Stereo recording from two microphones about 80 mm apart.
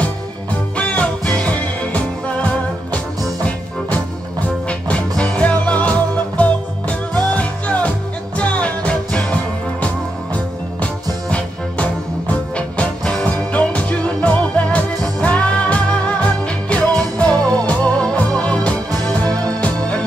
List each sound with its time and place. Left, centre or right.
0.0 s music: centre
4.6 s music: centre